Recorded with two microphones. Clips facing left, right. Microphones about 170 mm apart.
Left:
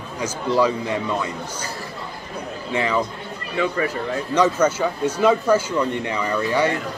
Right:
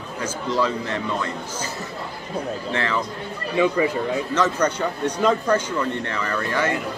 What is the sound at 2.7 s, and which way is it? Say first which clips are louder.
Speech: left 5 dB; 10° left (ahead or behind).